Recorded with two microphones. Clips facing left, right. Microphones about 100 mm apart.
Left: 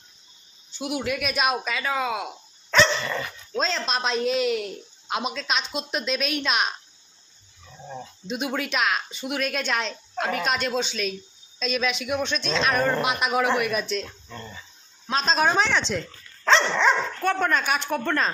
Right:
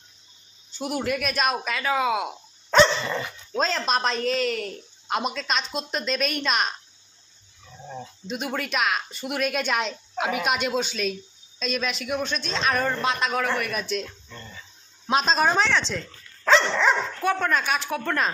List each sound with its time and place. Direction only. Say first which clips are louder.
0.7 s cricket: even; 45° right (ahead or behind)
1.0 s speech: even; centre (ahead or behind)
3.0 s speech: right 1 dB; 20° right (ahead or behind)
3.5 s speech: right 2 dB; 5° right (ahead or behind)
7.9 s speech: left 1 dB; centre (ahead or behind)
13.0 s a man's voice: left 1 dB; 15° left (ahead or behind)
13.7 s speech: left 2 dB; centre (ahead or behind)
15.2 s speech: left 2 dB; centre (ahead or behind)